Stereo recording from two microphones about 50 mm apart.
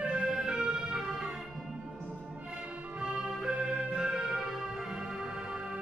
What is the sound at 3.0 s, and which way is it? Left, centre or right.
Music, centre.